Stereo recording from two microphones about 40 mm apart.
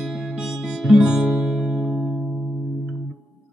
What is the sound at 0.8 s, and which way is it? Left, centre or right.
Music, centre.